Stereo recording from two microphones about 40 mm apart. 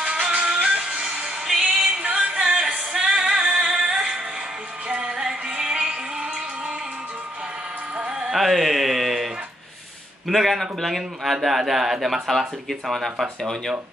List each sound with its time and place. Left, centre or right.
0.0 s music: right
1.5 s music: centre
2.0 s music: right
8.0 s a sound: right
8.3 s a sound: centre
10.2 s speech: centre